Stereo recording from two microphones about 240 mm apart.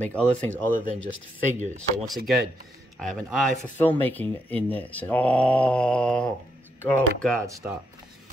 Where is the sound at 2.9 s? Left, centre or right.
Centre.